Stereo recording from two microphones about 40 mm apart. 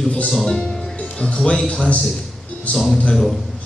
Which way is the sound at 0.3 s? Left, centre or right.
Centre.